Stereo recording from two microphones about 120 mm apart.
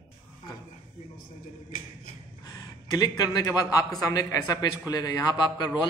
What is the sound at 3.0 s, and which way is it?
A man's voice, 30° left (ahead or behind).